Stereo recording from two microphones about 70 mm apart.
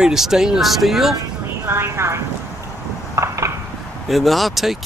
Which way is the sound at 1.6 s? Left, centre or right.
Right.